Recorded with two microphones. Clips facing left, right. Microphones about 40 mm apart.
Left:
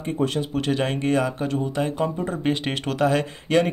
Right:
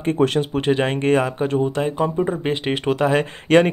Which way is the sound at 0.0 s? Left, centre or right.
Right.